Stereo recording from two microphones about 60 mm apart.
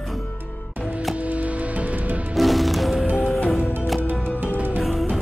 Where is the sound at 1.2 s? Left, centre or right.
Right.